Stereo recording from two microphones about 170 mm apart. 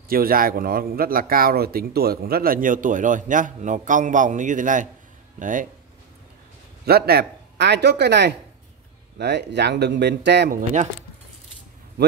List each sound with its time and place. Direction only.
0.1 s speech: 60° right (ahead or behind)
6.9 s speech: 65° right (ahead or behind)